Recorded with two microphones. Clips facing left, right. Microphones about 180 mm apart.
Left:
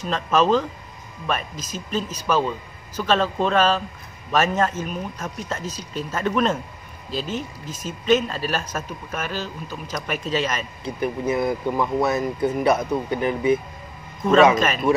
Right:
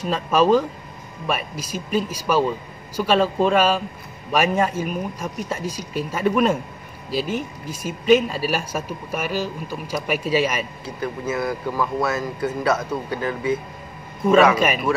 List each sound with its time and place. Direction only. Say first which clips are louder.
0.1 s speech: right 2 dB; 10° right (ahead or behind)
10.8 s speech: left 3 dB; 20° left (ahead or behind)
14.2 s speech: right 2 dB; 10° right (ahead or behind)